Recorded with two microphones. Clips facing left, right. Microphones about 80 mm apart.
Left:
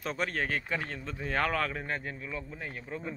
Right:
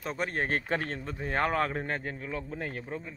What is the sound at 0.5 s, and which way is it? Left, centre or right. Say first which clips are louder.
Speech: right 3 dB; right.